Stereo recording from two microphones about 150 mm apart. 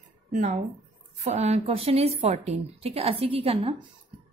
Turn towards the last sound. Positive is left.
turn(degrees=-40)  # may be behind; listen again after turning